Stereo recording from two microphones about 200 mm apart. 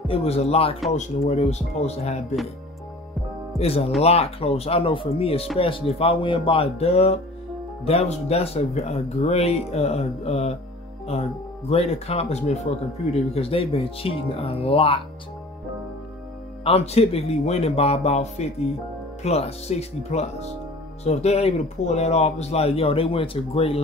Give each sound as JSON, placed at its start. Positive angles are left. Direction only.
{"t": 0.1, "sound": "speech", "side_deg": 30}
{"t": 3.5, "sound": "speech", "side_deg": 30}
{"t": 16.6, "sound": "speech", "side_deg": 30}